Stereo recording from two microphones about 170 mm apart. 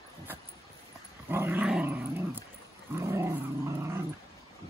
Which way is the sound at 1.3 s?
10° right (ahead or behind).